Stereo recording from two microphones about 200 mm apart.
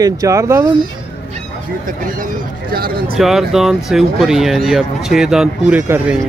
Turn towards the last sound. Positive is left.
turn(degrees=-10)  # may be behind; listen again after turning